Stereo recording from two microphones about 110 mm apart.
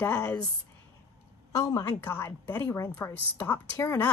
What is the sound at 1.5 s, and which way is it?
Speech, 30° left (ahead or behind).